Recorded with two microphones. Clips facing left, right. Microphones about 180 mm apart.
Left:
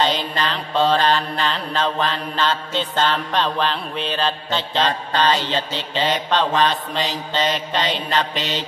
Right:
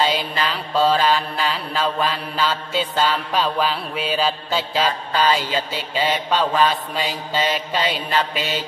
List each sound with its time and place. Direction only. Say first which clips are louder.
0.0 s mantra: even; 5° right (ahead or behind)